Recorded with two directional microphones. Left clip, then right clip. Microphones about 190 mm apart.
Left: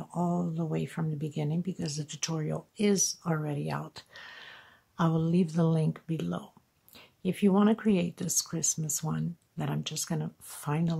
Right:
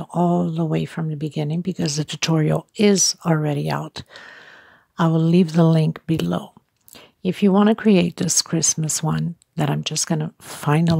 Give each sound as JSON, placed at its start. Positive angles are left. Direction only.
{"t": 0.0, "sound": "speech", "side_deg": -35}